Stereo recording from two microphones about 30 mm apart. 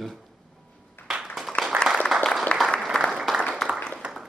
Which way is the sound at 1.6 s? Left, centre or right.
Left.